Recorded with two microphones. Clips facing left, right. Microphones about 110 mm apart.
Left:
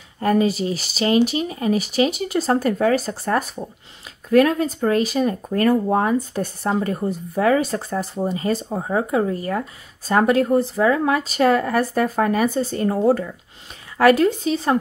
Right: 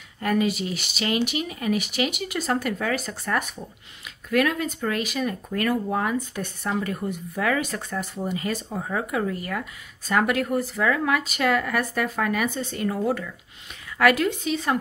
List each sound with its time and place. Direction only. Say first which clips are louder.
0.2 s speech: left 5 dB; 35° left (ahead or behind)